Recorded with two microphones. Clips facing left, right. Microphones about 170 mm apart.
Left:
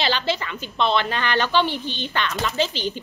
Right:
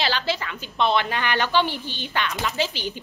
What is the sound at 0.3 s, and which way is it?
A woman's voice, 5° right (ahead or behind).